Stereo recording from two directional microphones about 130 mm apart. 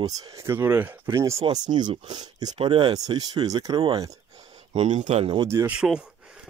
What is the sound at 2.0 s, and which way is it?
Speech, 35° right (ahead or behind).